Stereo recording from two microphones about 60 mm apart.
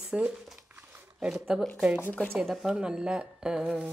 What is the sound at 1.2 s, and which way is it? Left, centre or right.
Speech, centre.